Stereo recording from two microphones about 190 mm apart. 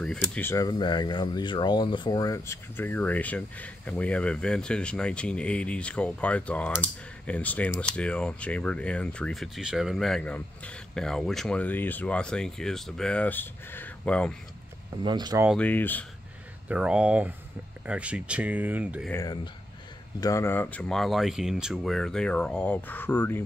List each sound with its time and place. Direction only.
0.0 s speech: 5° left (ahead or behind)
15.0 s speech: 20° right (ahead or behind)
15.5 s speech: 10° left (ahead or behind)
16.6 s speech: 5° right (ahead or behind)
19.2 s speech: 20° left (ahead or behind)